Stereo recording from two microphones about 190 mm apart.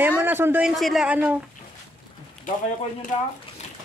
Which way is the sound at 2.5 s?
45° left (ahead or behind).